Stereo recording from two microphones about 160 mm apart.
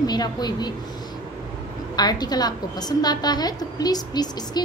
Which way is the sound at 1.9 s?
25° left (ahead or behind).